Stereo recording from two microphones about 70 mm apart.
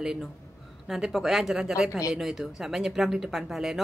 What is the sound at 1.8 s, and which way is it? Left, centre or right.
Speech, left.